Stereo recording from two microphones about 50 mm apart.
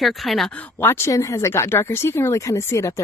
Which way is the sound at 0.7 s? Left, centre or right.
Left.